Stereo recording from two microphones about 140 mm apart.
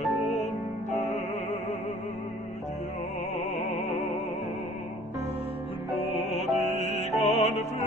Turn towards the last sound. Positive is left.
turn(degrees=50)  # may be behind; listen again after turning